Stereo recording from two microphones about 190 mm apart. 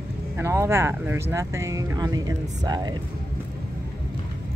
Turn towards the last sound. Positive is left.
turn(degrees=-20)  # may be behind; listen again after turning